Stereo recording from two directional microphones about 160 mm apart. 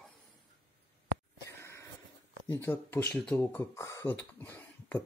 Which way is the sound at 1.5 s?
15° left (ahead or behind).